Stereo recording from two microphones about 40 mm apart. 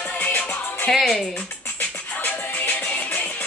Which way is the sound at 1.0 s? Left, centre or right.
Centre.